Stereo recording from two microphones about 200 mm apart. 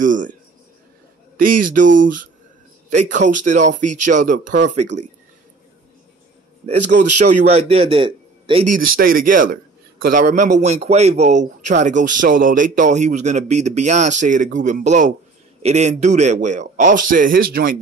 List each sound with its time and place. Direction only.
0.0 s a sound: 40° right (ahead or behind)
1.3 s a man's voice: 45° right (ahead or behind)
6.6 s a man's voice: 35° right (ahead or behind)
8.6 s a man's voice: 45° right (ahead or behind)